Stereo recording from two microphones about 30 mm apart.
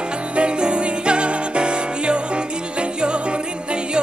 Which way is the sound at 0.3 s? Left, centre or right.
Right.